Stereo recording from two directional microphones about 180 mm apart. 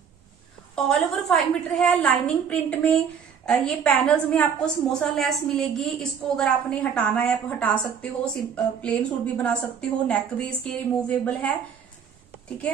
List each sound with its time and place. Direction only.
0.7 s a woman's voice: 5° left (ahead or behind)